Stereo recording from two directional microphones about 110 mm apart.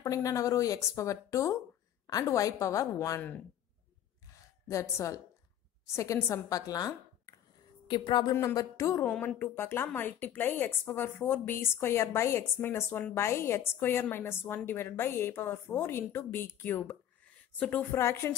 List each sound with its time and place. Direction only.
0.0 s a woman's voice: 30° left (ahead or behind)
3.2 s a woman's voice: 15° left (ahead or behind)
4.6 s a woman's voice: 25° left (ahead or behind)
7.9 s a woman's voice: 45° left (ahead or behind)
9.0 s a woman's voice: 10° left (ahead or behind)
17.9 s speech: 25° left (ahead or behind)